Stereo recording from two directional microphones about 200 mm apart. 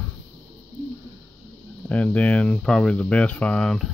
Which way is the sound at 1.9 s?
5° left (ahead or behind).